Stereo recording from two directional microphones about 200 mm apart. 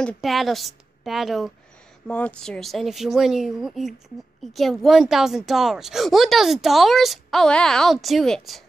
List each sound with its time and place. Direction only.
0.0 s a woman's voice: centre (ahead or behind)